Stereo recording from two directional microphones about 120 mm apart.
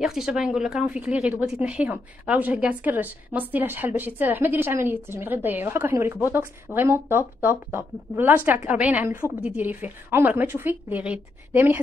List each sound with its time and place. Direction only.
0.0 s speech: centre (ahead or behind)